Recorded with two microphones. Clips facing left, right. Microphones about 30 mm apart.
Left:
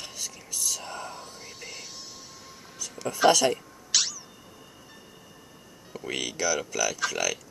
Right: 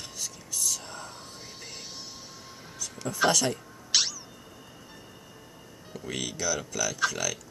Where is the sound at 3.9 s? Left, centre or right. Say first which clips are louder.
Even; centre.